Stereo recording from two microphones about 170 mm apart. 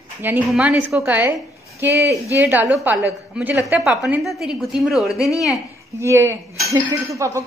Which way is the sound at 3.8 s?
5° right (ahead or behind).